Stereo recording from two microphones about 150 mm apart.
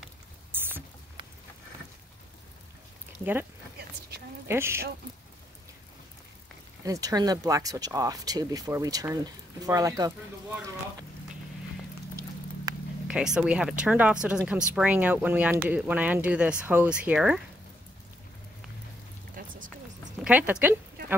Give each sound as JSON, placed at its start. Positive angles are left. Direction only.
{"t": 0.5, "sound": "rowboat", "side_deg": -15}
{"t": 4.5, "sound": "speech", "side_deg": -15}
{"t": 6.8, "sound": "speech", "side_deg": -20}
{"t": 12.7, "sound": "a sound", "side_deg": -25}
{"t": 13.1, "sound": "speech", "side_deg": -5}
{"t": 19.3, "sound": "a sound", "side_deg": -65}
{"t": 20.2, "sound": "speech", "side_deg": -10}